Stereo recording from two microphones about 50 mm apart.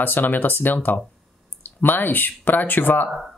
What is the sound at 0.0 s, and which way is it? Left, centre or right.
Speech, left.